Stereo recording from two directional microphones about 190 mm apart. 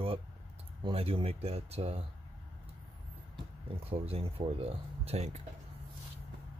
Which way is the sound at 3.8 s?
30° right (ahead or behind).